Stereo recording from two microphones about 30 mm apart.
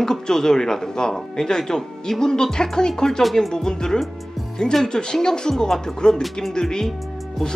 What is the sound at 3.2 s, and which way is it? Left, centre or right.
Music, centre.